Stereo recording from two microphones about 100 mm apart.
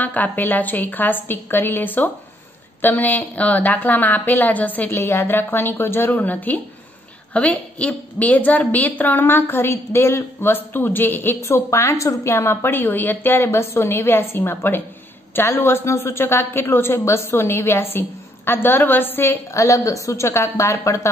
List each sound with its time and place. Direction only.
0.0 s a woman's voice: 15° left (ahead or behind)